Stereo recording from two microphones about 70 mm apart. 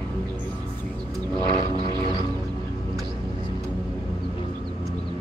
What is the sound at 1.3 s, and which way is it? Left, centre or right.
Vehicle, right.